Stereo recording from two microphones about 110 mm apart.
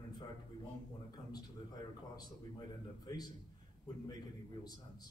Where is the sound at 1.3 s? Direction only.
35° left (ahead or behind).